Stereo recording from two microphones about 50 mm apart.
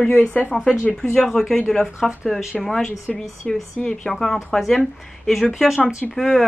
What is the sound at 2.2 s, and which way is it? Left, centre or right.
Speech, centre.